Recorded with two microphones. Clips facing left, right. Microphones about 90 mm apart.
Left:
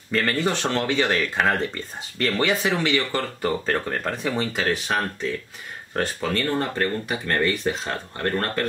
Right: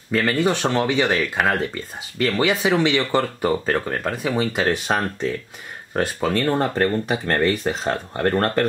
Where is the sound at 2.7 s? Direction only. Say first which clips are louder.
Right 5 dB; 20° right (ahead or behind).